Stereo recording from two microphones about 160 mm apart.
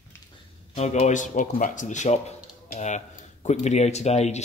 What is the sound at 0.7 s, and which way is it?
Speech, 45° left (ahead or behind).